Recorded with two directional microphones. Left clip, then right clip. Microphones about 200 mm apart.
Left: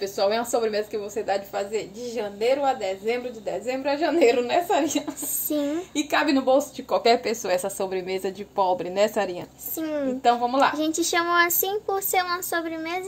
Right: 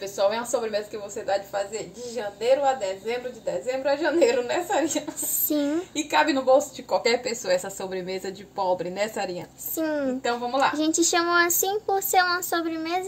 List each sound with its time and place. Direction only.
0.0 s a woman's voice: 35° left (ahead or behind)
5.5 s speech: 5° right (ahead or behind)
5.9 s speech: 30° left (ahead or behind)
9.8 s speech: 5° right (ahead or behind)